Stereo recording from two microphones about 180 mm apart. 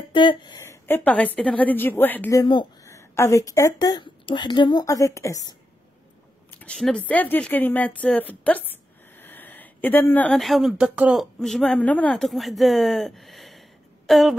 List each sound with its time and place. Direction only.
0.1 s a woman's voice: 25° left (ahead or behind); by 2.4 s 10° left (ahead or behind)
2.4 s speech: 25° left (ahead or behind)
6.5 s speech: 5° left (ahead or behind)